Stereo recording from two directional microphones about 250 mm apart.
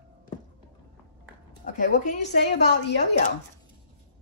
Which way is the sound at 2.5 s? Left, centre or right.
Left.